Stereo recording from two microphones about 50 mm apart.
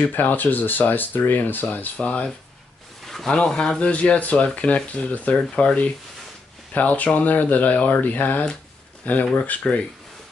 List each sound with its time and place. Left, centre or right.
0.1 s speech: left; by 3.9 s centre
3.9 s speech: left